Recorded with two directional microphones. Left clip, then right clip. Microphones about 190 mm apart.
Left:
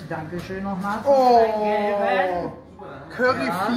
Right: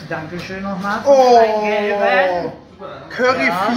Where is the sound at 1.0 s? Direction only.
15° right (ahead or behind).